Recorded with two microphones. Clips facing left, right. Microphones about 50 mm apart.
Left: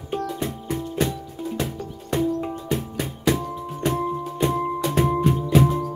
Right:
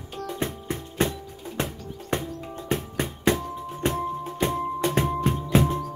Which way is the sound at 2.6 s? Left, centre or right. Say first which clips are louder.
Left 1 dB; right.